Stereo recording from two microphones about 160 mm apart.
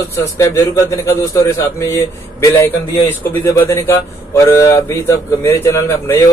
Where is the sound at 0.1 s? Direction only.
20° left (ahead or behind).